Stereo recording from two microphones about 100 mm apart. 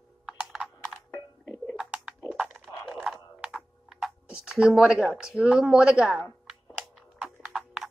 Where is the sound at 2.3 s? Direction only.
Centre (ahead or behind).